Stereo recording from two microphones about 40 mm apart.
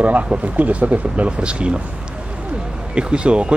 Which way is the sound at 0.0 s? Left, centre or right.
Right.